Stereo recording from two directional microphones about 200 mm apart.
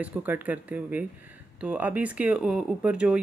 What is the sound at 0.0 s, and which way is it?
Speech, 10° right (ahead or behind).